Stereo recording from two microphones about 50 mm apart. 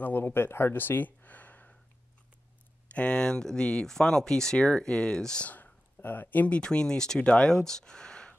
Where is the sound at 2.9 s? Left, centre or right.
Left.